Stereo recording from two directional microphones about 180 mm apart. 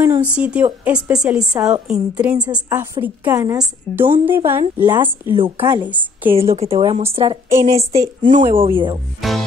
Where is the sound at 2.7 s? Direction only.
20° right (ahead or behind).